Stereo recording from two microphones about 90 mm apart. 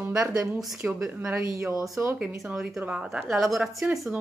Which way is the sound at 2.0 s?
20° right (ahead or behind).